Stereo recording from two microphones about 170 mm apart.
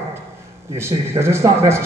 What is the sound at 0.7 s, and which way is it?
A man's voice, 15° right (ahead or behind).